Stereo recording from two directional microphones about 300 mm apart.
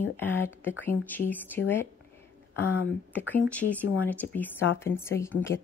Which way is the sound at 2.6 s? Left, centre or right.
Centre.